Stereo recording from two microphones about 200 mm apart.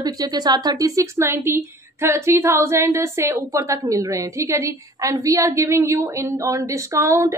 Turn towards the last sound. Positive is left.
turn(degrees=-15)  # may be behind; listen again after turning